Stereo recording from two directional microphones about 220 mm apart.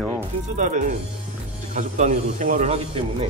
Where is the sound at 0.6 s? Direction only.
35° right (ahead or behind).